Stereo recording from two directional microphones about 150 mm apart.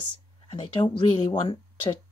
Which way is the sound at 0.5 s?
30° left (ahead or behind).